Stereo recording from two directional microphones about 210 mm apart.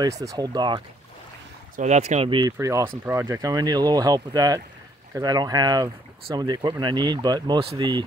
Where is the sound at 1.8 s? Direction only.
30° right (ahead or behind).